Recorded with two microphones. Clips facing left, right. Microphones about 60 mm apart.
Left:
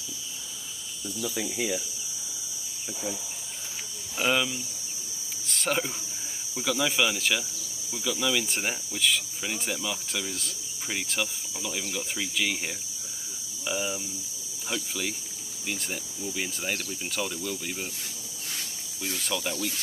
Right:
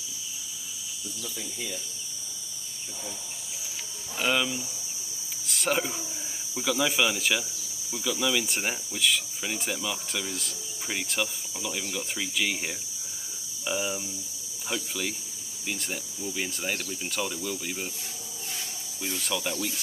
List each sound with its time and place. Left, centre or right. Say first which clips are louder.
1.2 s speech: left 8 dB; left
4.2 s speech: left 1 dB; centre
5.5 s cricket: right 1 dB; centre
6.5 s speech: right 1 dB; centre
19.0 s speech: even; centre